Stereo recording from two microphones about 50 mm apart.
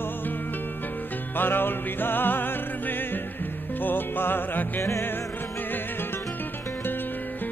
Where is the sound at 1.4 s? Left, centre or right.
Left.